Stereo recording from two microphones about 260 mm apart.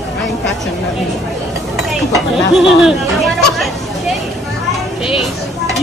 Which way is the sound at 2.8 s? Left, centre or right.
Centre.